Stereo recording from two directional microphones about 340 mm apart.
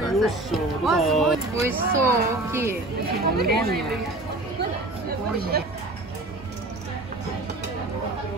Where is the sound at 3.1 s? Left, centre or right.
Right.